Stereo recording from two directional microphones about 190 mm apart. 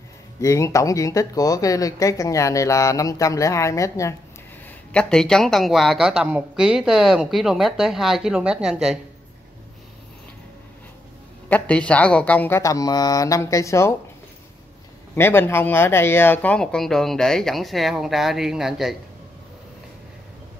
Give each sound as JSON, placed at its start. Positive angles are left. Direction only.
{"t": 0.4, "sound": "speech", "side_deg": 15}
{"t": 4.6, "sound": "speech", "side_deg": 5}
{"t": 11.4, "sound": "speech", "side_deg": 5}
{"t": 15.1, "sound": "speech", "side_deg": 10}